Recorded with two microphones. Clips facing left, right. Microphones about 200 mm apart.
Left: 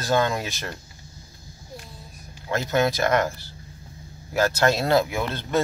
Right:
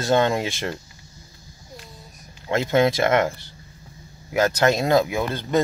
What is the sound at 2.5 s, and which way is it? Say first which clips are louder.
Speech: right 4 dB; 25° right (ahead or behind).